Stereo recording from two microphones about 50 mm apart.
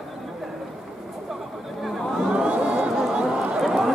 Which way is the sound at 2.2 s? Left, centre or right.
Centre.